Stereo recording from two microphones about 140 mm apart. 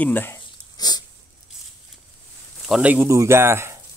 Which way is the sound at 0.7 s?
30° left (ahead or behind).